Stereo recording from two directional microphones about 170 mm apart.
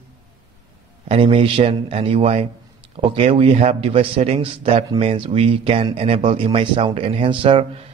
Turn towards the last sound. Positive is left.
turn(degrees=-35)  # may be behind; listen again after turning